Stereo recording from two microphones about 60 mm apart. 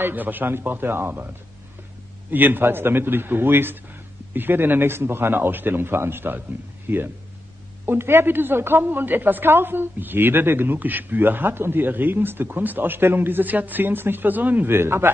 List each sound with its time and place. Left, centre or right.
0.0 s a woman's voice: right
2.3 s a woman's voice: right